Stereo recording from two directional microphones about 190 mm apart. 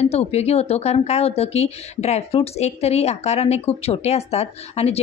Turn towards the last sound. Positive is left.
turn(degrees=35)  # may be behind; listen again after turning